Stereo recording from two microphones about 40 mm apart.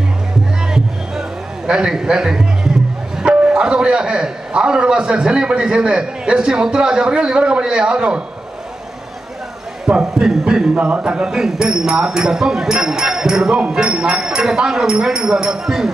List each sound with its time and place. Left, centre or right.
1.7 s speech: centre
9.8 s a sound: centre
10.7 s speech: right
11.3 s speech: centre